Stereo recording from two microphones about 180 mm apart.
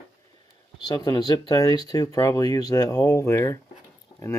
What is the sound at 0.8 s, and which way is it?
Speech, 20° left (ahead or behind).